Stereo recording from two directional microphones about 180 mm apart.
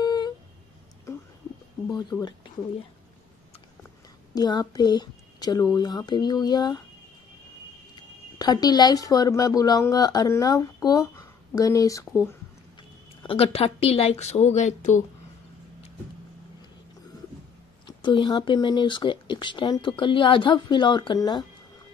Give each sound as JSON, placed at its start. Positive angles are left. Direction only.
{"t": 0.0, "sound": "a sound", "side_deg": 25}
{"t": 1.9, "sound": "a woman's voice", "side_deg": 25}
{"t": 4.3, "sound": "a woman's voice", "side_deg": 25}
{"t": 8.4, "sound": "a woman's voice", "side_deg": 20}
{"t": 13.2, "sound": "speech", "side_deg": 30}
{"t": 17.8, "sound": "a woman's voice", "side_deg": 25}